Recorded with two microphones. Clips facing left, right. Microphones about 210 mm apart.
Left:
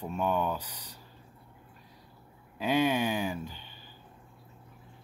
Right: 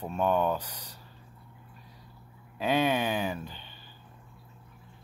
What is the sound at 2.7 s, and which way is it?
Speech, 10° left (ahead or behind).